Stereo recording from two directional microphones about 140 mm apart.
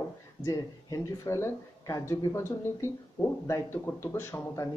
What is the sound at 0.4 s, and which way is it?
Speech, 25° left (ahead or behind).